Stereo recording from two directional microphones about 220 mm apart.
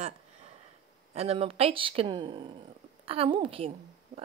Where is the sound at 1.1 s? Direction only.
25° right (ahead or behind).